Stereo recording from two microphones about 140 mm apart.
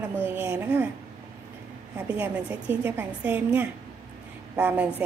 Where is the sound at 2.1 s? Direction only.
10° right (ahead or behind).